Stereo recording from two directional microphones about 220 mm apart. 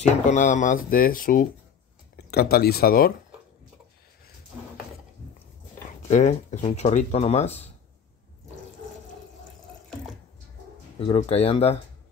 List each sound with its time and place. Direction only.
0.0 s speech: 35° left (ahead or behind)
6.0 s speech: 35° left (ahead or behind)
11.0 s speech: 25° left (ahead or behind)